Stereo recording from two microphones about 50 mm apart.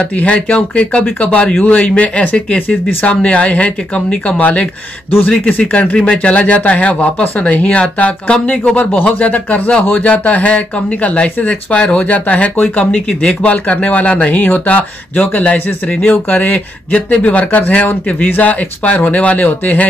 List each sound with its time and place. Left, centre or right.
0.2 s speech: left
1.5 s speech: left